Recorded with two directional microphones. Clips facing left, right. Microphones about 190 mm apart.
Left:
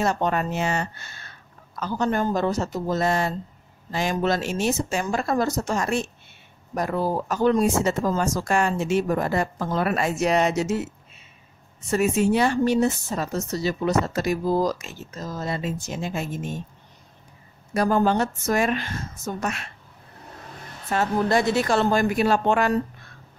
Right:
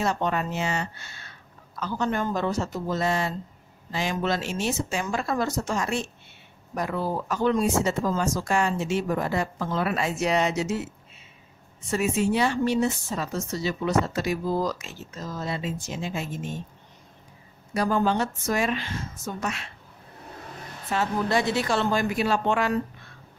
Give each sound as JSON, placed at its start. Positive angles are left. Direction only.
{"t": 0.0, "sound": "speech", "side_deg": 45}
{"t": 11.9, "sound": "speech", "side_deg": 45}
{"t": 17.7, "sound": "speech", "side_deg": 45}
{"t": 20.9, "sound": "speech", "side_deg": 45}